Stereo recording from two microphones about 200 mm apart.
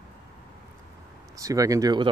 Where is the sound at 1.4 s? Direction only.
15° right (ahead or behind).